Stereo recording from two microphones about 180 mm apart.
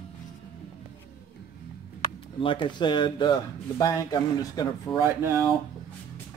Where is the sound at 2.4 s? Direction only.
30° left (ahead or behind).